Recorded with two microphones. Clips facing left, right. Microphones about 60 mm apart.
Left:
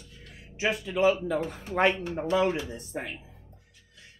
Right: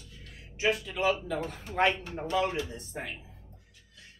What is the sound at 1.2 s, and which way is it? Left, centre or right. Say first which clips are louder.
Speech: left 4 dB; centre.